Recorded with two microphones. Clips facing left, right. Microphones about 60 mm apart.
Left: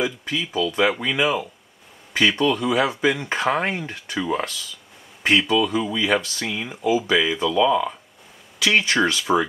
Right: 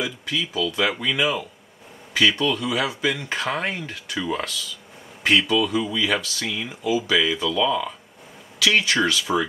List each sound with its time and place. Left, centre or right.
0.0 s speech: left
8.8 s speech: left